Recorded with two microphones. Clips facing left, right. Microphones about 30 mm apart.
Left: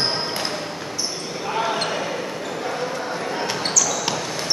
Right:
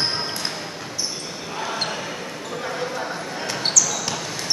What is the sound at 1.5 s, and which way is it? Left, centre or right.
Basketball bounce, left.